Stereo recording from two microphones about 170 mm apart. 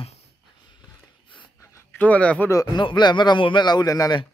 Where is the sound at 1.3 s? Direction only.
10° left (ahead or behind).